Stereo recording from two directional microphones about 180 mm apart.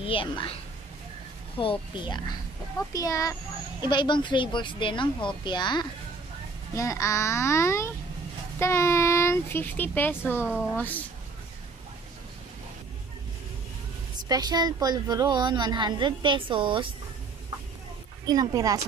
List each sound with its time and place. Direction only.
0.0 s a woman's voice: 30° left (ahead or behind)
1.6 s a child's voice: 25° left (ahead or behind); by 11.1 s 10° left (ahead or behind)
14.3 s a woman's voice: 20° right (ahead or behind)
18.2 s a woman's voice: 20° right (ahead or behind)